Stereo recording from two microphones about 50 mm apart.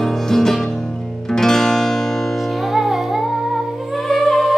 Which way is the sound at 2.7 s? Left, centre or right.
Centre.